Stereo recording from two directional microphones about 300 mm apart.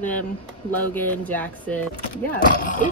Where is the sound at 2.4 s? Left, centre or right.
Left.